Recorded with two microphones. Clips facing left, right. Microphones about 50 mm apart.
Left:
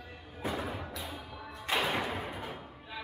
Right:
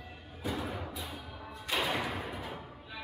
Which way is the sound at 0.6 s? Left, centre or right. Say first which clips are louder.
Even; centre.